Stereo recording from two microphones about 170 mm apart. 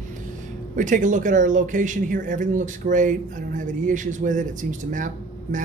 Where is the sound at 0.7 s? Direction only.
50° right (ahead or behind).